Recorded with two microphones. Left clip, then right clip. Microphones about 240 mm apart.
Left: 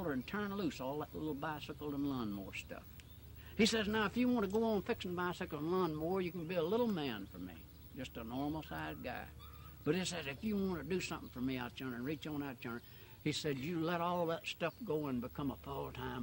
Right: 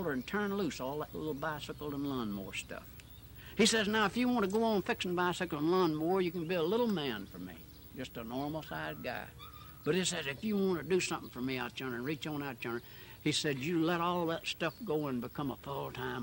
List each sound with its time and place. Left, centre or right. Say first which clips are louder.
0.0 s speech: right 5 dB; right